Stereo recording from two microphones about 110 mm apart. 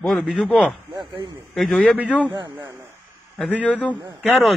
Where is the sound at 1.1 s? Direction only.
45° right (ahead or behind).